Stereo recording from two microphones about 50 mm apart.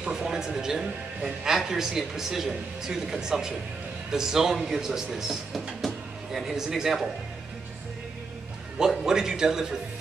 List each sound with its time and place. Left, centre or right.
0.1 s a man's voice: centre
9.0 s speech: centre